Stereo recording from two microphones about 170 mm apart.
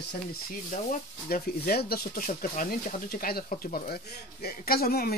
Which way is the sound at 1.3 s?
65° left (ahead or behind).